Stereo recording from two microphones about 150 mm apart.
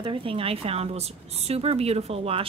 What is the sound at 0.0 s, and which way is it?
Speech, 35° right (ahead or behind).